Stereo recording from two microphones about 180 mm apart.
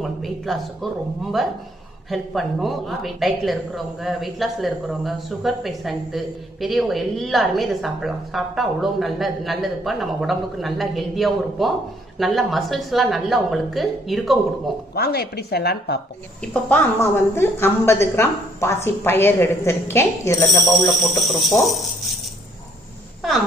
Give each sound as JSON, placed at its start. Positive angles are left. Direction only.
{"t": 0.0, "sound": "a woman's voice", "side_deg": 0}
{"t": 15.0, "sound": "a woman's voice", "side_deg": 60}
{"t": 16.3, "sound": "a woman's voice", "side_deg": 10}
{"t": 20.6, "sound": "a woman's voice", "side_deg": 0}